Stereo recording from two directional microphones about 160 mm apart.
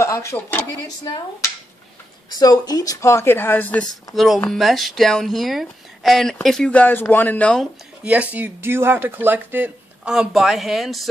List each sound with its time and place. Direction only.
0.0 s speech: 20° left (ahead or behind)
0.8 s speech: 25° left (ahead or behind)
2.3 s speech: 25° left (ahead or behind); by 7.6 s 10° left (ahead or behind)
8.0 s speech: 10° right (ahead or behind)